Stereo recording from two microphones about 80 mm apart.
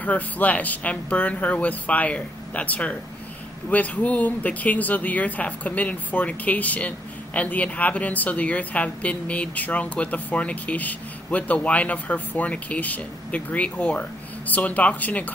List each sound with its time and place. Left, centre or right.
0.0 s speech: centre